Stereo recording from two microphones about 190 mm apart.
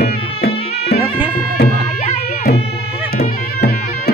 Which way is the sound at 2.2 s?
55° left (ahead or behind).